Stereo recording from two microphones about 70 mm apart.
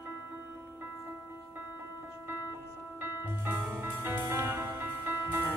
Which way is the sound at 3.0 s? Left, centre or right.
Right.